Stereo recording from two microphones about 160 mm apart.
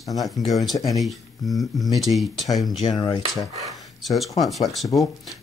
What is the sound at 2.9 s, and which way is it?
Speech, 25° left (ahead or behind).